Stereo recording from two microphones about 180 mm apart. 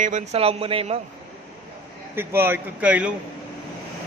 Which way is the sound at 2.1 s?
10° right (ahead or behind).